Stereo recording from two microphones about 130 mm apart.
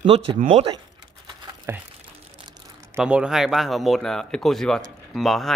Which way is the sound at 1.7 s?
20° right (ahead or behind).